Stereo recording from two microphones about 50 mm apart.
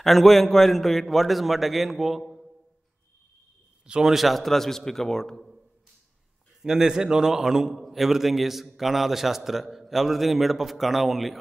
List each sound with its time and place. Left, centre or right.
0.0 s a man's voice: centre
3.8 s a man's voice: centre
4.1 s a man's voice: centre
6.6 s a man's voice: centre